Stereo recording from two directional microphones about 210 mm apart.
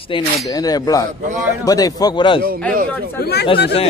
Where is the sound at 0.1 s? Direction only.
25° left (ahead or behind).